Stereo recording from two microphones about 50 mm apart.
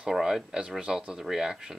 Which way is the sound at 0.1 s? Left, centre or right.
Centre.